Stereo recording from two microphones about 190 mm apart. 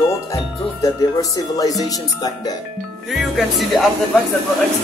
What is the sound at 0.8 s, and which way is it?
Speech, 20° left (ahead or behind).